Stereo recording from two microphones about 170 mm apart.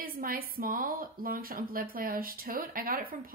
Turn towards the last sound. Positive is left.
turn(degrees=-55)  # may be behind; listen again after turning